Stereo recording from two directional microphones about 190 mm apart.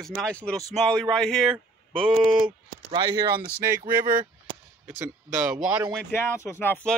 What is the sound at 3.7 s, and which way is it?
Speech, 45° right (ahead or behind).